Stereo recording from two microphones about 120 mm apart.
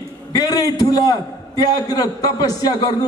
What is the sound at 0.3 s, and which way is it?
A man's voice, 30° left (ahead or behind).